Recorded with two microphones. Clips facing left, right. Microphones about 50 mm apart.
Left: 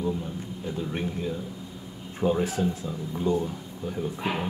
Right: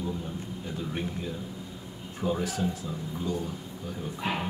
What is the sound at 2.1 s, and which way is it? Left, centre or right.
Speech, left.